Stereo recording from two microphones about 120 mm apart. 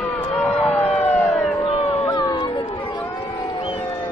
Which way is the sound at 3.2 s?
35° left (ahead or behind).